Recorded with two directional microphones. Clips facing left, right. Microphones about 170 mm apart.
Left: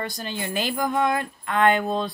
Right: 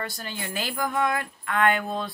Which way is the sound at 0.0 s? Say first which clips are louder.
Left 4 dB; 20° left (ahead or behind).